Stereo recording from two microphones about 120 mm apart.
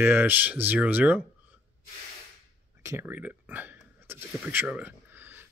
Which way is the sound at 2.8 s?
25° right (ahead or behind).